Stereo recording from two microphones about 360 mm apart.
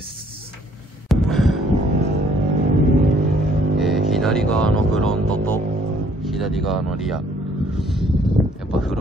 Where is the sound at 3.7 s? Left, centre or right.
Centre.